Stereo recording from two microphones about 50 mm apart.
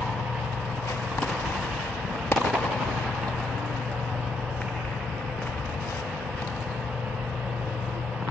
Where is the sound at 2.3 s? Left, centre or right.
Left.